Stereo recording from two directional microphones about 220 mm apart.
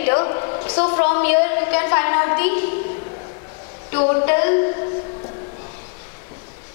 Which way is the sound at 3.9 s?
25° left (ahead or behind).